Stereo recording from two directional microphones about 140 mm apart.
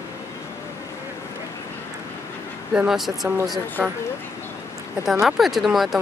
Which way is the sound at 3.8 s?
15° right (ahead or behind).